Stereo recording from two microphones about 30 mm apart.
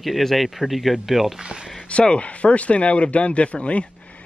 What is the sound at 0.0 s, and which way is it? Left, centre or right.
Speech, centre.